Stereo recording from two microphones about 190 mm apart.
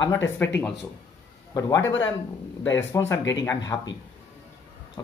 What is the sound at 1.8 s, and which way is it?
Speech, 85° left.